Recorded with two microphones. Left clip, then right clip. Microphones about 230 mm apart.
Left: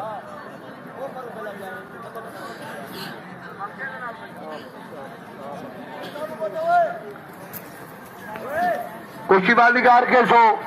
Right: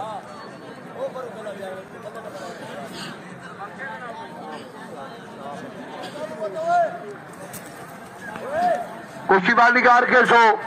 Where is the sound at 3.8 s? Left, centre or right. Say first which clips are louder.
Left 1 dB; right.